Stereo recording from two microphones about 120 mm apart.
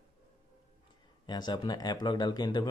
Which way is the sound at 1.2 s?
35° left (ahead or behind).